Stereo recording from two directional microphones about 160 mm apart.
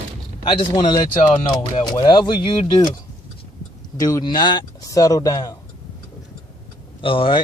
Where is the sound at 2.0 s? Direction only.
30° left (ahead or behind).